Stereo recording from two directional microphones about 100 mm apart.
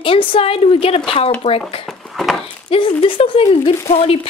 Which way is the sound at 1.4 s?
90° left.